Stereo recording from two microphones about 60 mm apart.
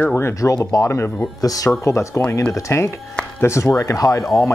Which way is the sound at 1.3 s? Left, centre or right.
Left.